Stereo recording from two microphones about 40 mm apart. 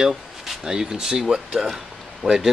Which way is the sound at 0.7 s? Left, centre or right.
Centre.